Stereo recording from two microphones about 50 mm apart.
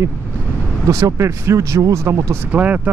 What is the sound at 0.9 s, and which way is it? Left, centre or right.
Speech, right.